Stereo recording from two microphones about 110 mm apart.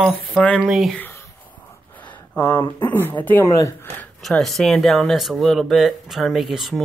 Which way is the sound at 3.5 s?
30° left (ahead or behind).